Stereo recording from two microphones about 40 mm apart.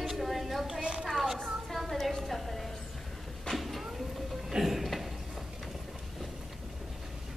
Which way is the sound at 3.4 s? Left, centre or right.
Centre.